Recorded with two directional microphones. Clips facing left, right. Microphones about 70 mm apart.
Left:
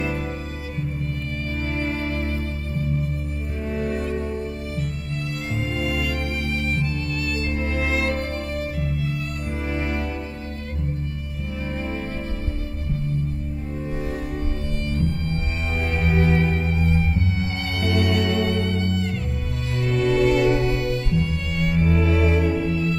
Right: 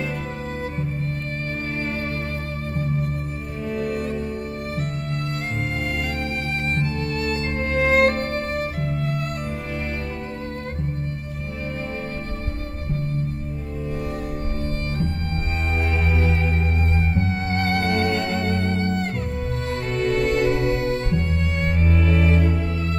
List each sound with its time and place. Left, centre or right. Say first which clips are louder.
3.6 s music: right 1 dB; left
5.8 s music: left 1 dB; right
16.2 s music: left 4 dB; left
16.4 s music: left 2 dB; right